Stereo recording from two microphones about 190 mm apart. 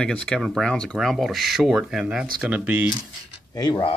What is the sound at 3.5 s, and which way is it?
Speech, 20° left (ahead or behind).